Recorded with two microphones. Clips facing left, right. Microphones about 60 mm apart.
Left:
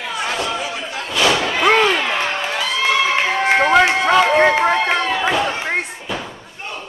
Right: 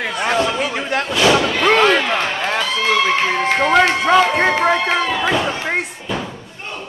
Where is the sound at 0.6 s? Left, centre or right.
Right.